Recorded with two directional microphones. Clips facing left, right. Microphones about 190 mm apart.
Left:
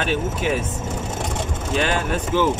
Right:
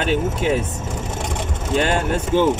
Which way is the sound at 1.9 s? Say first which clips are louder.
Right 3 dB; 25° right (ahead or behind).